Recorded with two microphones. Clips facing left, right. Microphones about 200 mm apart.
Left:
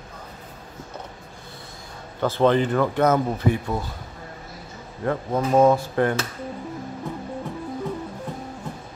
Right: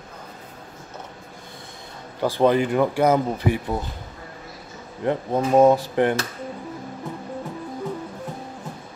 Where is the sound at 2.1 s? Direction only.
10° right (ahead or behind).